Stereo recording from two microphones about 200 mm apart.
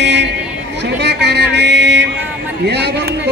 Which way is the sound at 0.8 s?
60° right (ahead or behind).